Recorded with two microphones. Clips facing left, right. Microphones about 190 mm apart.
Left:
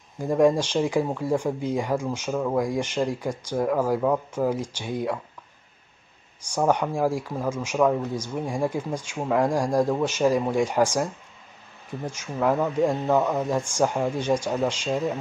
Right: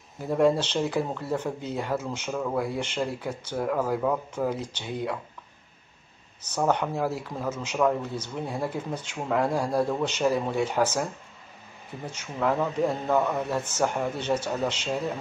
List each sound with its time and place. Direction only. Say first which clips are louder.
0.2 s speech: left 3 dB; 10° left (ahead or behind)
6.5 s speech: left 3 dB; 10° left (ahead or behind)
12.1 s speech: left 3 dB; 10° left (ahead or behind)